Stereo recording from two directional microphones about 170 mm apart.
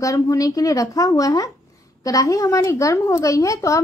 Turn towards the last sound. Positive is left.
turn(degrees=20)  # may be behind; listen again after turning